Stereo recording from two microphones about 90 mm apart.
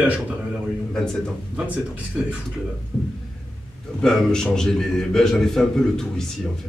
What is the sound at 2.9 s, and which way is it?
A man's voice, 5° left (ahead or behind).